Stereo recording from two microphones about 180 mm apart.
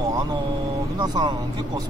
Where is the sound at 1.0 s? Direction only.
25° right (ahead or behind).